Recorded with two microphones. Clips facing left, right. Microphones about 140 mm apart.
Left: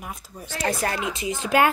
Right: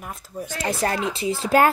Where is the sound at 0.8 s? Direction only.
30° right (ahead or behind).